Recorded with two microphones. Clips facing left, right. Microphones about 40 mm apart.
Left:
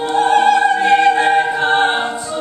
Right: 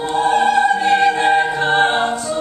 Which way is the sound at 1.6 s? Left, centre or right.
Left.